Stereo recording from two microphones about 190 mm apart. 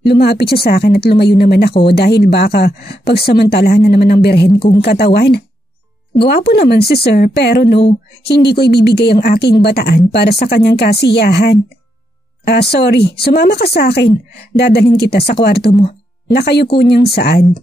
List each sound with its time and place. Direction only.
0.0 s speech: 60° left (ahead or behind)
4.5 s speech: 30° left (ahead or behind)
4.7 s speech: 55° left (ahead or behind)